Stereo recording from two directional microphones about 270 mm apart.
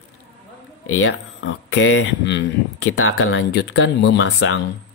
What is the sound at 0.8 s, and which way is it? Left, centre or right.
Speech, left.